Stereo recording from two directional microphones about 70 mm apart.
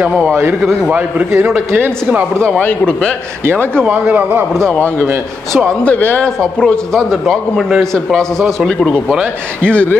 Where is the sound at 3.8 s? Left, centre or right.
Centre.